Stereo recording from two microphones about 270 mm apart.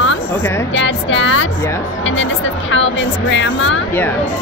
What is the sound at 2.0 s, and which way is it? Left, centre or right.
A woman's voice, left.